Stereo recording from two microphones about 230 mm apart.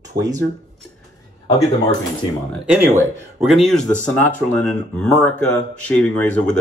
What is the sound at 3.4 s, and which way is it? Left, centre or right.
Speech, centre.